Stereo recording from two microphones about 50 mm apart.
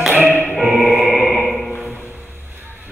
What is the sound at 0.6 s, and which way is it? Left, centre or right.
Music, centre.